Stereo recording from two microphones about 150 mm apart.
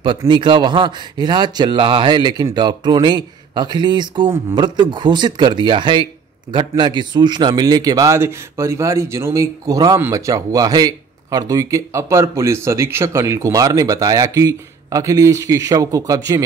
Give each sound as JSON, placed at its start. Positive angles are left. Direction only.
{"t": 0.2, "sound": "a man's voice", "side_deg": -30}